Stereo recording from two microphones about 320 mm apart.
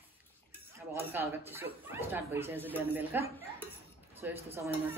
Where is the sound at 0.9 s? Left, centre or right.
Centre.